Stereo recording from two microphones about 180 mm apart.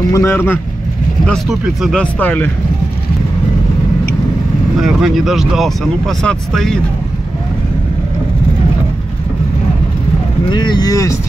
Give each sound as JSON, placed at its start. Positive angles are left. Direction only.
{"t": 0.1, "sound": "speech", "side_deg": 15}
{"t": 1.2, "sound": "speech", "side_deg": 0}
{"t": 2.1, "sound": "speech", "side_deg": 10}
{"t": 4.7, "sound": "speech", "side_deg": 0}
{"t": 10.5, "sound": "speech", "side_deg": 25}